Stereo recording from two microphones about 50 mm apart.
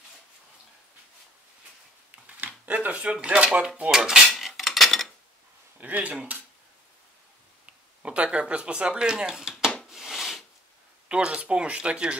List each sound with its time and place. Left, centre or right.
2.2 s speech: right
3.9 s cutlery: centre
5.8 s speech: right
7.6 s speech: right
9.8 s a sound: centre
11.1 s speech: right